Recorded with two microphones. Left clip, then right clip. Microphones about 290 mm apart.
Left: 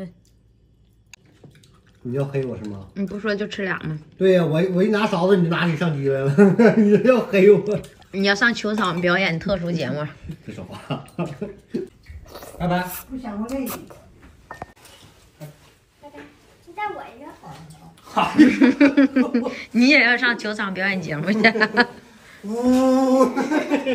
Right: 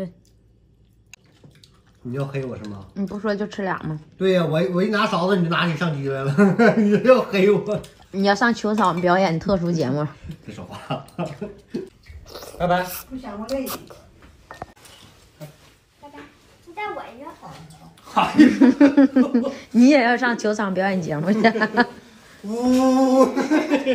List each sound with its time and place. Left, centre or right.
2.9 s speech: centre
4.2 s speech: centre
8.1 s speech: centre
10.1 s speech: centre
12.3 s a sound: centre
12.8 s speech: centre
14.8 s a sound: centre
18.0 s speech: centre